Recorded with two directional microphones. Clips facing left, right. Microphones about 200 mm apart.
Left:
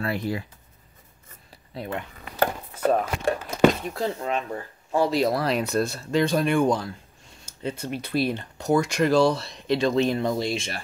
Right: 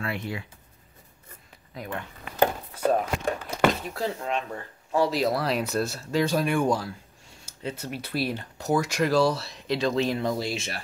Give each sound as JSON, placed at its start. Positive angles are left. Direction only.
{"t": 0.0, "sound": "speech", "side_deg": 40}
{"t": 1.7, "sound": "speech", "side_deg": 30}
{"t": 2.7, "sound": "chopping", "side_deg": 5}
{"t": 3.9, "sound": "speech", "side_deg": 0}